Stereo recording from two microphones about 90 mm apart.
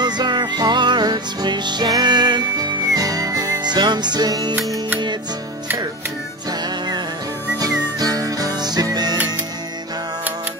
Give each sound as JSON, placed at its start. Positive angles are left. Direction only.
{"t": 0.0, "sound": "music", "side_deg": -55}
{"t": 7.5, "sound": "music", "side_deg": -45}